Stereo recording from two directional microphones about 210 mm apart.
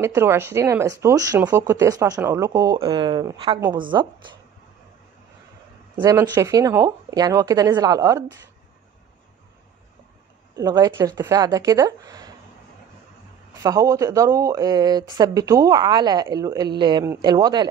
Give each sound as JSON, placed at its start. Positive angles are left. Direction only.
{"t": 0.0, "sound": "speech", "side_deg": -10}
{"t": 5.9, "sound": "speech", "side_deg": -20}
{"t": 10.5, "sound": "speech", "side_deg": -15}
{"t": 13.6, "sound": "speech", "side_deg": -15}